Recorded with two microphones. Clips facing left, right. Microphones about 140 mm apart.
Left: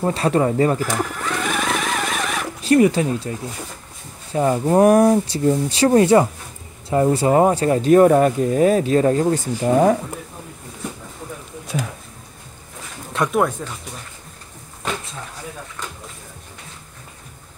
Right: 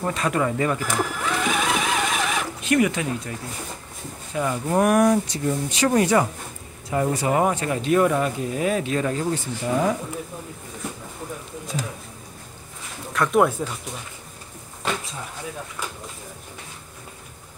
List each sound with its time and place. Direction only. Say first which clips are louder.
0.0 s speech: left 5 dB; 30° left (ahead or behind)
0.8 s sewing machine: left 1 dB; 5° right (ahead or behind)
2.6 s speech: left 7 dB; 35° left (ahead or behind)
13.3 s speech: right 2 dB; 5° right (ahead or behind)